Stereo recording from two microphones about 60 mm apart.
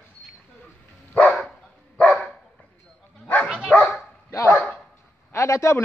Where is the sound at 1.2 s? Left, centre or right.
Centre.